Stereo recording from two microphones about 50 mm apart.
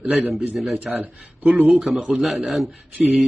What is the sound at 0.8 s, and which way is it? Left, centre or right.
Speech, right.